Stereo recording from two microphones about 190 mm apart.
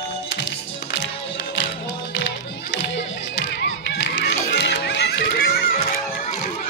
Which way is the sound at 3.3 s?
70° left (ahead or behind).